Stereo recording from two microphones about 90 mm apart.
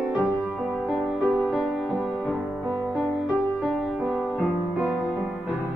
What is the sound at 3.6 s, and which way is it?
Music, 5° right (ahead or behind).